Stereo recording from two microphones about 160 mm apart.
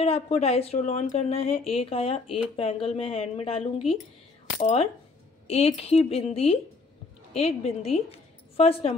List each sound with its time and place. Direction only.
0.0 s a woman's voice: 40° left (ahead or behind)